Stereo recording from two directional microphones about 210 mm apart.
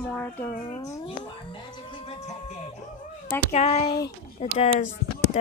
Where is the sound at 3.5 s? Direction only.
30° left (ahead or behind).